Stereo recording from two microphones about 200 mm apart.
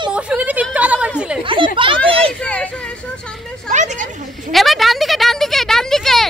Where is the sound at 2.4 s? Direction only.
5° left (ahead or behind).